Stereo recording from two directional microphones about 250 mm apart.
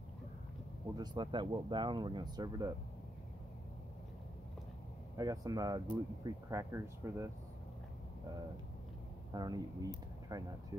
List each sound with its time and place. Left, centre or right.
0.9 s speech: centre
5.1 s speech: centre
9.3 s speech: centre